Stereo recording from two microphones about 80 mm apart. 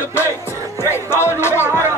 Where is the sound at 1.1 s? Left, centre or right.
Left.